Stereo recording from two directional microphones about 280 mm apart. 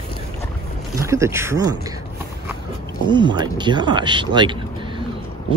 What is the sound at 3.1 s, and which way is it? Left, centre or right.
Speech, centre.